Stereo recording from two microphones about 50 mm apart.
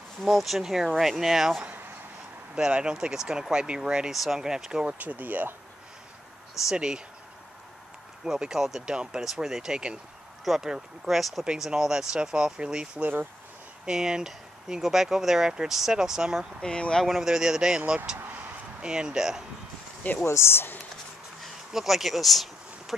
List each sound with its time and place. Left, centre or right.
0.2 s speech: centre
2.5 s speech: centre
4.1 s speech: centre
4.8 s speech: right
6.7 s speech: centre
8.3 s speech: centre
11.4 s speech: centre
13.0 s speech: right
13.8 s speech: centre
16.6 s speech: centre
17.0 s speech: centre
17.3 s speech: centre
20.2 s speech: left
21.4 s a sound: centre